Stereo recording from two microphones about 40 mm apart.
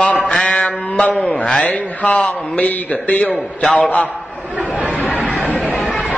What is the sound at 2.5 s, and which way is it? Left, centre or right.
Speech, left.